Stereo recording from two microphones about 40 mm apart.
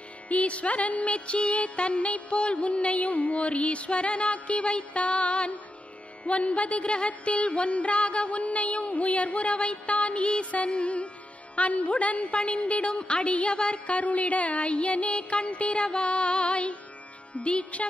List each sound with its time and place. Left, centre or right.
0.3 s music: left